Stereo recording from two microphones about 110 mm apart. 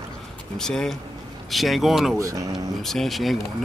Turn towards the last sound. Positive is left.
turn(degrees=0)  # may be behind; listen again after turning